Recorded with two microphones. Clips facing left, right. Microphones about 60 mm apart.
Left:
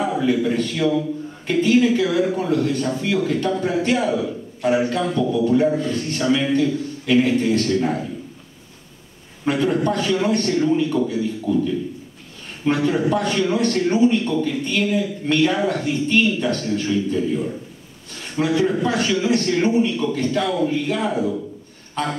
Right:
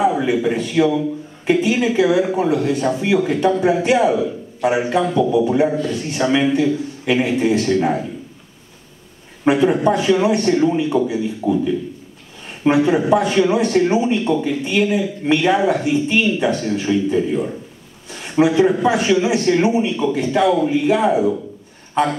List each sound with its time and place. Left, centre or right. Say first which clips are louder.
0.0 s a man's voice: right 3 dB; centre
9.5 s speech: right 5 dB; centre